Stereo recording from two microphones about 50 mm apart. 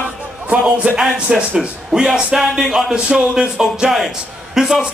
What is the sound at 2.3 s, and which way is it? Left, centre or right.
Music, centre.